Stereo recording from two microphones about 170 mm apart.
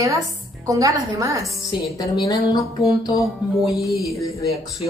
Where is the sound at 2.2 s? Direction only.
20° left (ahead or behind).